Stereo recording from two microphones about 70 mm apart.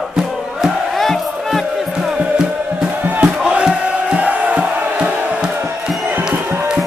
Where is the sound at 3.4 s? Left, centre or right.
Centre.